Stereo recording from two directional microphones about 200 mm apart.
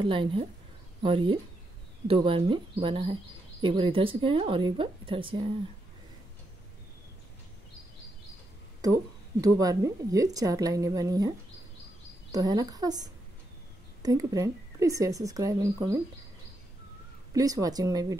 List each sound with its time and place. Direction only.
0.0 s a woman's voice: 25° right (ahead or behind)
8.8 s a woman's voice: 15° right (ahead or behind)
17.3 s speech: 20° right (ahead or behind)